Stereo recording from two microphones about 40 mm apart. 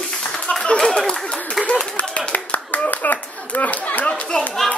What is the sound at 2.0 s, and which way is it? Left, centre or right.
Clapping, left.